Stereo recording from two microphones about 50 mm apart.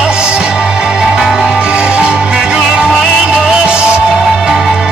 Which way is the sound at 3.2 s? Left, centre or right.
Centre.